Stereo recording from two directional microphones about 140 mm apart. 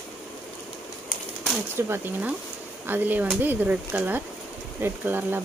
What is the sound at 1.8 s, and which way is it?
Speech, 15° right (ahead or behind).